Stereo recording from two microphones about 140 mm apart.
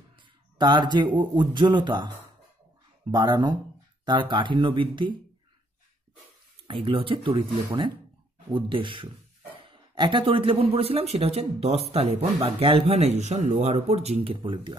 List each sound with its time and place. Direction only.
0.6 s speech: 30° right (ahead or behind)
6.7 s speech: 40° right (ahead or behind)